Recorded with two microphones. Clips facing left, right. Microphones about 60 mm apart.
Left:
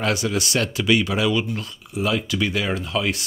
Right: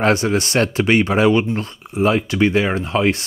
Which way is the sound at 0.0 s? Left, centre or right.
Right.